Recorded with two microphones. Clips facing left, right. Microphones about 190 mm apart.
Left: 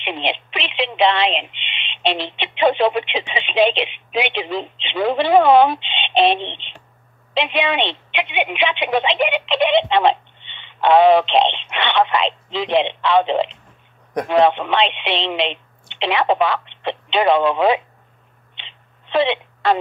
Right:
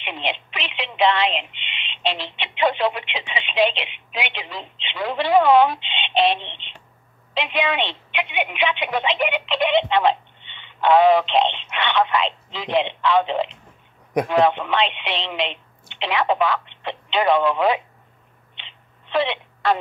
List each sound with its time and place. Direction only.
0.0 s a woman's voice: 25° left (ahead or behind)
18.5 s telephone: 25° left (ahead or behind)